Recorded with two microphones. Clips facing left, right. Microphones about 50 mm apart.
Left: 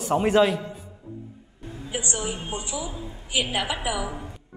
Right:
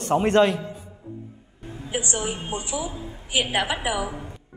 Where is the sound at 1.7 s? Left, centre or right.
Right.